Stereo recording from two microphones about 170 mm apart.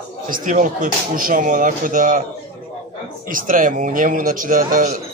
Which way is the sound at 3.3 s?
50° right (ahead or behind).